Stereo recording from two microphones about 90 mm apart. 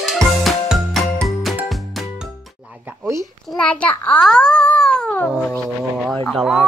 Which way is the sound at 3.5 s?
10° left (ahead or behind).